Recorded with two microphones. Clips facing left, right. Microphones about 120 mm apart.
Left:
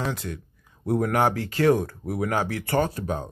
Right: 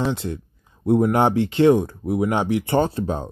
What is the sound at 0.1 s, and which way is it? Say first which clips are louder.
A man's voice: right 6 dB; 25° right (ahead or behind).